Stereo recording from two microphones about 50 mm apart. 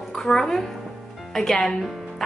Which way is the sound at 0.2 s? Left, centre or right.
Centre.